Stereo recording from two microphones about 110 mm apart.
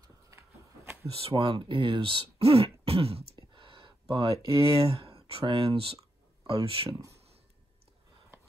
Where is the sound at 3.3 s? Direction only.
50° right (ahead or behind).